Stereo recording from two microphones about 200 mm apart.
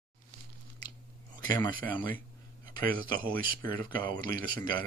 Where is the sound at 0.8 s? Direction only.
20° left (ahead or behind).